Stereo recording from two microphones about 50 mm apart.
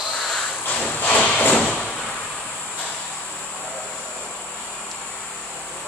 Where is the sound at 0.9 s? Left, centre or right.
Left.